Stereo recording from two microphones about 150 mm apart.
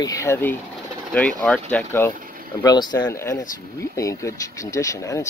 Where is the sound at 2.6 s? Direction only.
25° left (ahead or behind).